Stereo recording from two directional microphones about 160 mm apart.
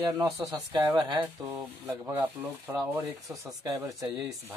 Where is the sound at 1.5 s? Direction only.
15° right (ahead or behind).